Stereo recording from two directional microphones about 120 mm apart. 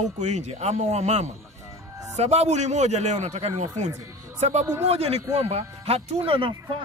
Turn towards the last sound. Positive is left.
turn(degrees=-45)  # may be behind; listen again after turning